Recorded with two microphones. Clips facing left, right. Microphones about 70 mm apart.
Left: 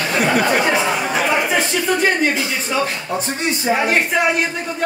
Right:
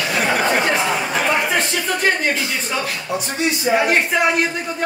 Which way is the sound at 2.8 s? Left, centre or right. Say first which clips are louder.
Left 1 dB; left.